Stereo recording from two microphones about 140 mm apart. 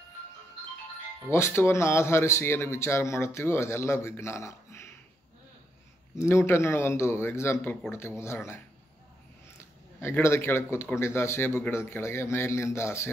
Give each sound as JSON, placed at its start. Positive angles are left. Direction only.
{"t": 1.3, "sound": "speech", "side_deg": 20}
{"t": 6.1, "sound": "speech", "side_deg": 20}